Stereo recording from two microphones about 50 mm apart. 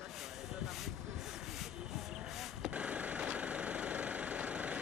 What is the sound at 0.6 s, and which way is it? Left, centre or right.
Vehicle, centre.